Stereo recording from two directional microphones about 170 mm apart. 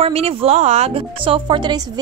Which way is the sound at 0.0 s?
35° right (ahead or behind).